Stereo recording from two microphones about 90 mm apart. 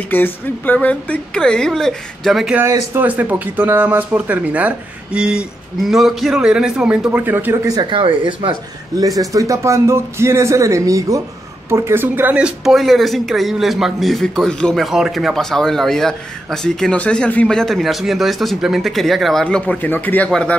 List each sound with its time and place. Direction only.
0.1 s a woman's voice: 20° left (ahead or behind); by 2.5 s centre (ahead or behind)
2.6 s speech: 30° right (ahead or behind)
3.1 s speech: 20° right (ahead or behind)
7.5 s speech: 45° right (ahead or behind)
7.9 s speech: 75° right (ahead or behind)
8.9 s speech: 40° right (ahead or behind)
11.7 s speech: 30° right (ahead or behind); by 12.7 s 10° right (ahead or behind)
12.7 s a man's voice: centre (ahead or behind)
19.4 s a woman's voice: 10° left (ahead or behind)